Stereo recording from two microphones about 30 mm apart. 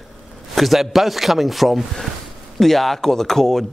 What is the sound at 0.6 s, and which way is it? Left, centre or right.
Speech, centre.